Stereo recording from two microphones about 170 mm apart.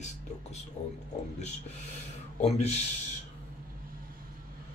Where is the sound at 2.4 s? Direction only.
40° left (ahead or behind).